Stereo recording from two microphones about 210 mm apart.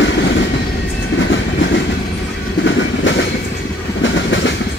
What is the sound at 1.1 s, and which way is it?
Train, 65° left (ahead or behind).